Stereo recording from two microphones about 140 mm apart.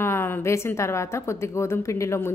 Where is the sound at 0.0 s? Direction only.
15° left (ahead or behind).